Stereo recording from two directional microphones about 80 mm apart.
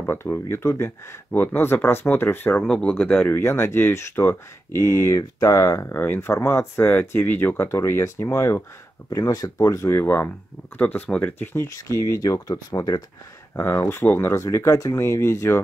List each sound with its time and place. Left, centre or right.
0.0 s speech: left
2.6 s speech: centre
3.4 s speech: left
9.1 s speech: left
11.6 s speech: left
13.6 s speech: left